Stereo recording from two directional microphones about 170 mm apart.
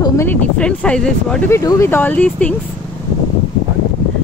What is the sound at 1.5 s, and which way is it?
Speech, 15° left (ahead or behind).